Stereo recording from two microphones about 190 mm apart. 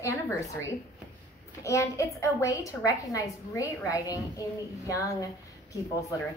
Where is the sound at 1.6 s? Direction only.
15° left (ahead or behind).